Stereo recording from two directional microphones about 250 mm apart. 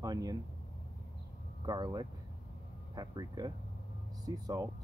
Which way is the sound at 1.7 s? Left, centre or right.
Centre.